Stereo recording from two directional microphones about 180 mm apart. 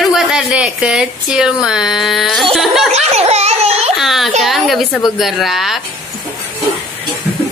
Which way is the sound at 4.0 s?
Centre (ahead or behind).